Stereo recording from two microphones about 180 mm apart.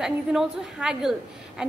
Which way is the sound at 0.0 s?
5° right (ahead or behind).